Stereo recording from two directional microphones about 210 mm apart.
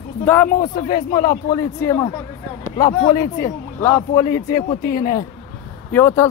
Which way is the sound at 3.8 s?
15° left (ahead or behind).